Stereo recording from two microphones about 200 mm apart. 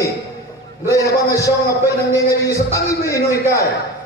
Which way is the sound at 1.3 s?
15° left (ahead or behind).